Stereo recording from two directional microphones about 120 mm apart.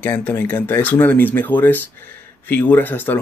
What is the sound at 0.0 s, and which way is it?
Speech, 15° left (ahead or behind).